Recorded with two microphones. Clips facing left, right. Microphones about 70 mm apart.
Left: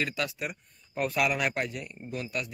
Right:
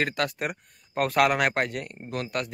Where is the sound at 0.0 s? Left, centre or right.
Right.